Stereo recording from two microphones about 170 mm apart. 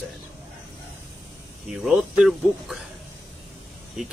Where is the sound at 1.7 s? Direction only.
5° right (ahead or behind).